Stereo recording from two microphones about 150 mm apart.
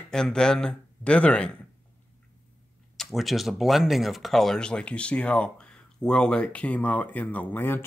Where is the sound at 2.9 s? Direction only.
Centre (ahead or behind).